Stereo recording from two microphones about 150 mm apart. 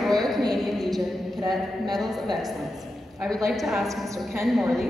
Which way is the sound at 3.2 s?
Centre (ahead or behind).